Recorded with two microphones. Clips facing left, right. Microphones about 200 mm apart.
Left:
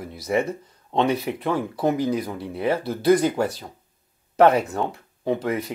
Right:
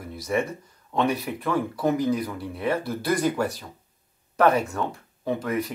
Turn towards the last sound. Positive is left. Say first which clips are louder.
# left 2 dB
turn(degrees=25)  # may be behind; listen again after turning